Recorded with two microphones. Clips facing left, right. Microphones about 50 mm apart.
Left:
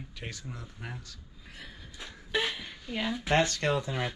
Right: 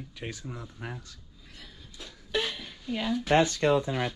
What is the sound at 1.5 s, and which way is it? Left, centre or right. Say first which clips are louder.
Drawer open or close: left 3 dB; left.